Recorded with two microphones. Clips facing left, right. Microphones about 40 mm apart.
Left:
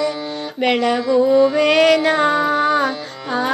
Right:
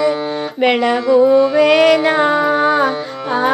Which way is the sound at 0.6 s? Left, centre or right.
Centre.